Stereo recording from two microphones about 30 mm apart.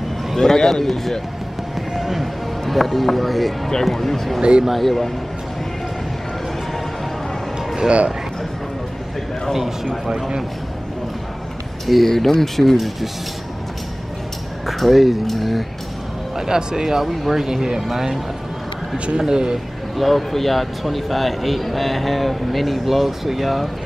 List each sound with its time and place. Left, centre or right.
0.4 s a man's voice: centre
1.8 s fireworks: centre
2.6 s speech: centre
4.4 s speech: right
4.6 s speech: centre
11.8 s speech: centre
12.7 s speech: centre
14.7 s speech: centre
16.3 s speech: right
19.1 s speech: right
20.0 s speech: centre